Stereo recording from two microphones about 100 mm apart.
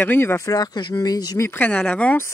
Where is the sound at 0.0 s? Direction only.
20° left (ahead or behind); by 1.4 s 40° left (ahead or behind).